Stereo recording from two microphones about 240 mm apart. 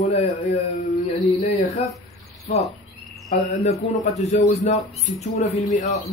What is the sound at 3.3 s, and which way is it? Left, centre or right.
Speech, left.